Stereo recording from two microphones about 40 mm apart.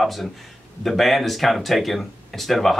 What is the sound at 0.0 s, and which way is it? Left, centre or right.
Speech, centre.